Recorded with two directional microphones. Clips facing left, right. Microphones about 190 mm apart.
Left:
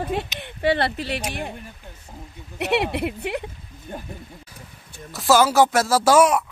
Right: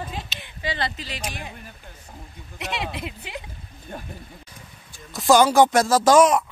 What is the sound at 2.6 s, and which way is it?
Speech, 65° left (ahead or behind).